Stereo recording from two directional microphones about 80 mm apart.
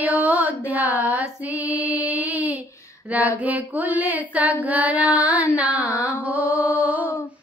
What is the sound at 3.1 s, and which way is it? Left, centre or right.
Female singing, centre.